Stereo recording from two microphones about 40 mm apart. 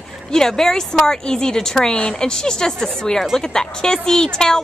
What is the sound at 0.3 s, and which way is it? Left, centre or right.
Speech, centre.